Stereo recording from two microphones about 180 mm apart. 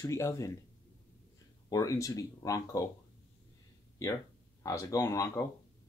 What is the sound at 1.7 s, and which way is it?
Speech, 20° left (ahead or behind).